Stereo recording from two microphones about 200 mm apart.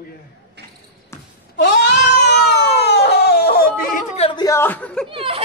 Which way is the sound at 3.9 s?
30° left (ahead or behind).